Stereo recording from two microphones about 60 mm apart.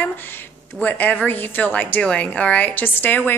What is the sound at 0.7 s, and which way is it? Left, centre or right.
A woman's voice, left.